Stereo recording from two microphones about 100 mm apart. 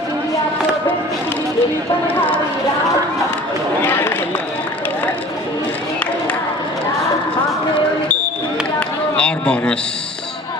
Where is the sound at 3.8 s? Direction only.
20° left (ahead or behind).